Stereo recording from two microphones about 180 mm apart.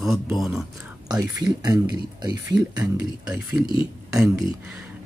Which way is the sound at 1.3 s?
20° right (ahead or behind).